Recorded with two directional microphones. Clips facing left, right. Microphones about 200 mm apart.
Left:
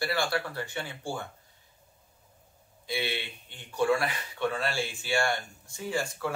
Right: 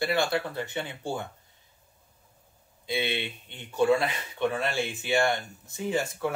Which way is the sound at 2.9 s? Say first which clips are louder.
Right 3 dB; 20° right (ahead or behind).